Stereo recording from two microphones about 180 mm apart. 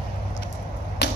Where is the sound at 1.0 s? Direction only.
70° left (ahead or behind).